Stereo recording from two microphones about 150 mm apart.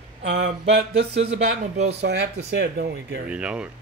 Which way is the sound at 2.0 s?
90° right.